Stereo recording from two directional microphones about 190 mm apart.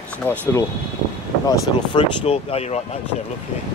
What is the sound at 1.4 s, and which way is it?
Speech, 30° left (ahead or behind).